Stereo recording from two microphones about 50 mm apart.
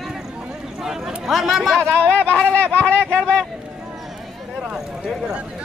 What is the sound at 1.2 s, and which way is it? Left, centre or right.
Chatter, centre.